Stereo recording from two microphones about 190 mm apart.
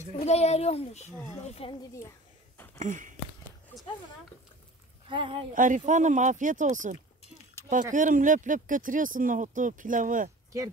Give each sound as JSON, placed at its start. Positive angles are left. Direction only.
{"t": 0.2, "sound": "a child's voice", "side_deg": 35}
{"t": 2.5, "sound": "a sound", "side_deg": 10}
{"t": 2.8, "sound": "speech", "side_deg": -40}
{"t": 5.1, "sound": "speech", "side_deg": -25}
{"t": 5.5, "sound": "speech", "side_deg": -45}